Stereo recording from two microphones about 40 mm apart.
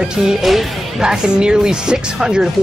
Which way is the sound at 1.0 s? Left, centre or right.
Centre.